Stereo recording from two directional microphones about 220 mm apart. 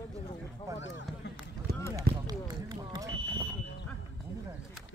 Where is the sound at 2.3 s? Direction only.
20° right (ahead or behind).